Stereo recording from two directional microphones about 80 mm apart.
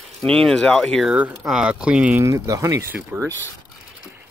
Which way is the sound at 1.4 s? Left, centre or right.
Centre.